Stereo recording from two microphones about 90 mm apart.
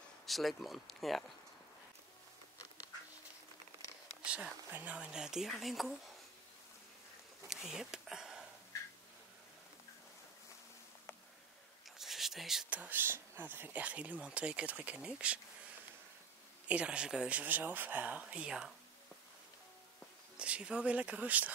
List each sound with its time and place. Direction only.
0.3 s speech: centre (ahead or behind)
4.2 s speech: 15° right (ahead or behind)
7.4 s a sound: 5° right (ahead or behind)
12.0 s a sound: 5° right (ahead or behind)
12.6 s speech: 15° right (ahead or behind)
16.6 s speech: 10° right (ahead or behind)
20.3 s speech: 10° right (ahead or behind)